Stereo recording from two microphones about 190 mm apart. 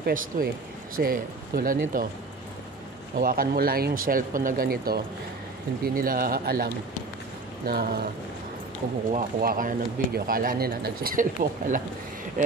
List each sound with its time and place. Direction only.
0.0 s speech: 50° right (ahead or behind)
3.2 s speech: 50° right (ahead or behind)
9.1 s speech: 50° right (ahead or behind)